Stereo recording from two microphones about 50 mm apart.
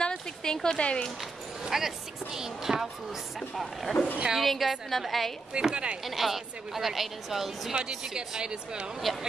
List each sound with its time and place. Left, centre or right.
0.0 s a sound: centre
0.7 s speech: left
1.7 s a woman's voice: centre
5.5 s speech: centre
6.0 s a woman's voice: centre
9.0 s a woman's voice: centre